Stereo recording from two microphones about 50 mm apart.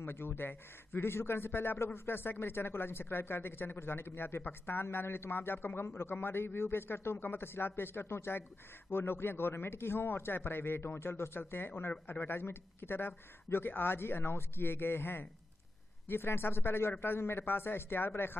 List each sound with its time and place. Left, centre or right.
0.0 s speech: left
5.9 s a man's voice: left
6.1 s speech: left